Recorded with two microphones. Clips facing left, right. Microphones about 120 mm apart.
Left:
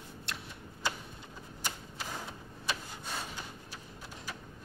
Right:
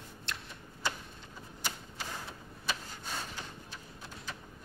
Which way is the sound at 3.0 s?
Centre (ahead or behind).